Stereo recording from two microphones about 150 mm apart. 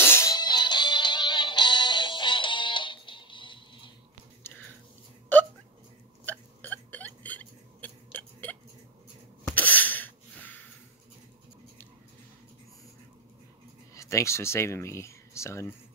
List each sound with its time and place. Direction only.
0.0 s music: 15° left (ahead or behind); by 3.9 s 35° left (ahead or behind)
6.2 s hiccup: 10° left (ahead or behind)
9.5 s sneeze: 10° left (ahead or behind)
13.9 s speech: 20° left (ahead or behind)